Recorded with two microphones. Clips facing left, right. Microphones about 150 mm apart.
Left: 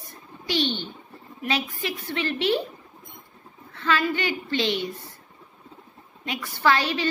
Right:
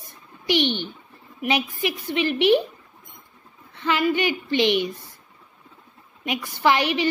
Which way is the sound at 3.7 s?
15° right (ahead or behind).